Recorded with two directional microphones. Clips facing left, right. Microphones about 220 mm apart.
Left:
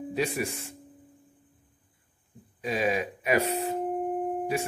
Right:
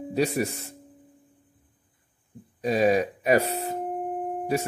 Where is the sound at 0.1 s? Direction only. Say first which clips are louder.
Right 5 dB; 40° right (ahead or behind).